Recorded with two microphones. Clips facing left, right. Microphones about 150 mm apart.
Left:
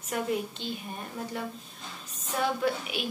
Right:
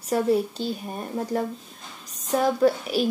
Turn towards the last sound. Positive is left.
turn(degrees=-40)  # may be behind; listen again after turning